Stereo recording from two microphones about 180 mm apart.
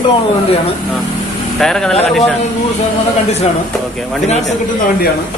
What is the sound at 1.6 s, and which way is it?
Speech, 5° left (ahead or behind).